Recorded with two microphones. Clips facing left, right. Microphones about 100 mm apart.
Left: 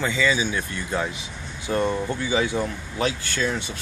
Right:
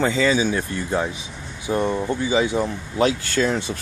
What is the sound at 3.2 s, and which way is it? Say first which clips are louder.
Speech: right 5 dB; 40° right (ahead or behind).